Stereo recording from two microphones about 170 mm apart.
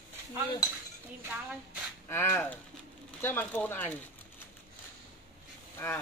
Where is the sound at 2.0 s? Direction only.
15° left (ahead or behind).